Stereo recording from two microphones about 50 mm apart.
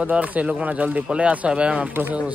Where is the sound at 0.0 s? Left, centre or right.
Right.